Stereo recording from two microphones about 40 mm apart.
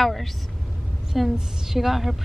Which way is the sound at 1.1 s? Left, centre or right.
Centre.